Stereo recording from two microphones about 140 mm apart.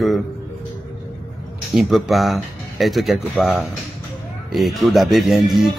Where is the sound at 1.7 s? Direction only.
Centre (ahead or behind).